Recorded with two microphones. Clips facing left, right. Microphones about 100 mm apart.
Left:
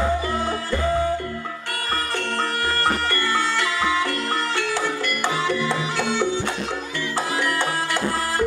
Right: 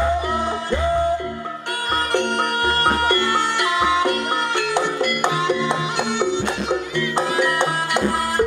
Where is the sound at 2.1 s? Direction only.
20° right (ahead or behind).